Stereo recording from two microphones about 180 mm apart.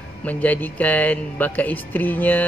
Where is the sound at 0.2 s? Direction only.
10° left (ahead or behind).